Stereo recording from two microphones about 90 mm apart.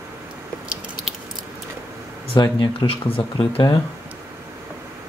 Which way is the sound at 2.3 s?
60° left (ahead or behind).